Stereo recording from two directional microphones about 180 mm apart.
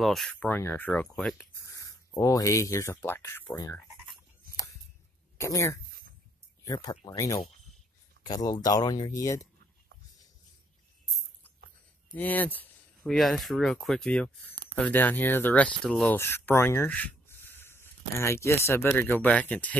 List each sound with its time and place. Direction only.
0.0 s speech: centre (ahead or behind)
1.7 s speech: 15° left (ahead or behind)
5.4 s speech: 15° left (ahead or behind)
12.1 s speech: 10° left (ahead or behind)